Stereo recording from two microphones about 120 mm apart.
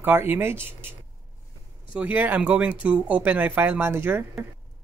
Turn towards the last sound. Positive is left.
turn(degrees=-20)  # may be behind; listen again after turning